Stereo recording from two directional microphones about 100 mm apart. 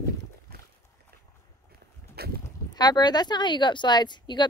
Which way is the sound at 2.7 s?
45° left (ahead or behind).